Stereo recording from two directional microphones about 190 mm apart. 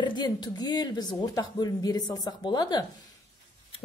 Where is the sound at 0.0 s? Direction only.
20° left (ahead or behind).